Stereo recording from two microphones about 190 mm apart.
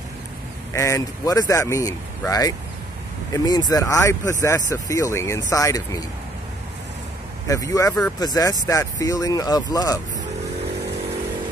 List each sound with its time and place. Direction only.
0.7 s speech: 15° left (ahead or behind)
7.4 s speech: 15° left (ahead or behind)